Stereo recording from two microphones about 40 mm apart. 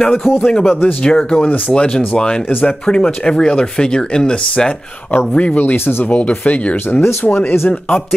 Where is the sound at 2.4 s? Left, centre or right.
Left.